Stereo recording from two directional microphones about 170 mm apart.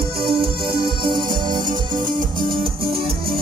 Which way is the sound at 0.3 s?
30° right (ahead or behind).